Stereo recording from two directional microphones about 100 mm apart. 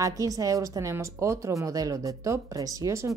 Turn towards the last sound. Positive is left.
turn(degrees=-30)  # may be behind; listen again after turning